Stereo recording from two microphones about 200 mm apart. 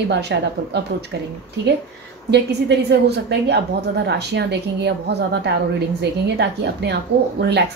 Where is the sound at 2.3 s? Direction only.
55° right (ahead or behind).